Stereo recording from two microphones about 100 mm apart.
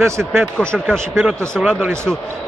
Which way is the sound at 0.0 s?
25° right (ahead or behind).